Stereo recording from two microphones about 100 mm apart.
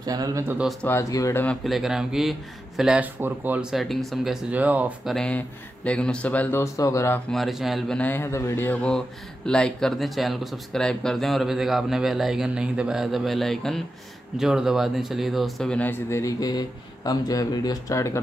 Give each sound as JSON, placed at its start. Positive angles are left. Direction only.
{"t": 0.0, "sound": "speech", "side_deg": -40}
{"t": 0.8, "sound": "speech", "side_deg": 30}
{"t": 1.6, "sound": "speech", "side_deg": 0}
{"t": 3.7, "sound": "speech", "side_deg": 0}
{"t": 5.0, "sound": "speech", "side_deg": 5}
{"t": 6.6, "sound": "speech", "side_deg": 30}
{"t": 7.2, "sound": "speech", "side_deg": 0}
{"t": 7.9, "sound": "speech", "side_deg": 15}
{"t": 9.5, "sound": "speech", "side_deg": 5}
{"t": 15.8, "sound": "a man's voice", "side_deg": 25}